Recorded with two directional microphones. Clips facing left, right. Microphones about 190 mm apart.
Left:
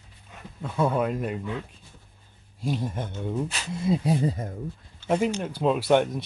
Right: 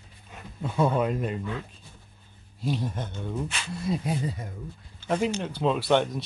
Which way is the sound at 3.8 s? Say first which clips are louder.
Left 4 dB; 25° left (ahead or behind).